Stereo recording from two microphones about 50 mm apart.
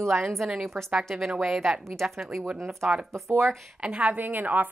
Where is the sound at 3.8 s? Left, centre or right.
Right.